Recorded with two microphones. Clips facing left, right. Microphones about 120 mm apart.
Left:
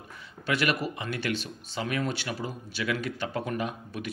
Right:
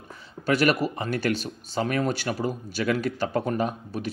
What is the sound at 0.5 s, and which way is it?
Speech, 40° right (ahead or behind).